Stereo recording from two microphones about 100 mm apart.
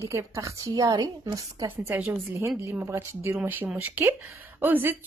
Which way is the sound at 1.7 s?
20° right (ahead or behind).